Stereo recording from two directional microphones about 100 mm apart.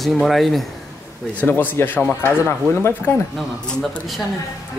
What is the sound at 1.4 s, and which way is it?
Speech, 20° left (ahead or behind).